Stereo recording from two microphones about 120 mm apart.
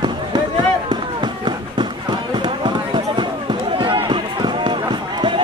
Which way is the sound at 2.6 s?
40° right (ahead or behind).